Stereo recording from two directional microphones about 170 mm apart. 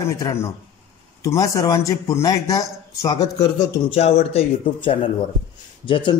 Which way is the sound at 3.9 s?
35° left (ahead or behind).